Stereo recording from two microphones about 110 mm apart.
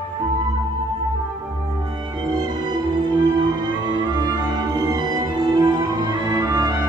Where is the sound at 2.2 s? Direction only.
40° right (ahead or behind).